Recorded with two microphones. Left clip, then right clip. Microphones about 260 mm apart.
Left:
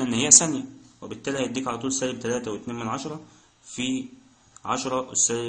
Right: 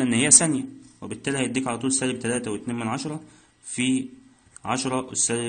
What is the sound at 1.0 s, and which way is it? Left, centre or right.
Speech, right.